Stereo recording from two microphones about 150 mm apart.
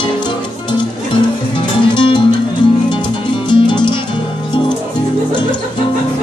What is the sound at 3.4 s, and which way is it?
Music, 30° left (ahead or behind).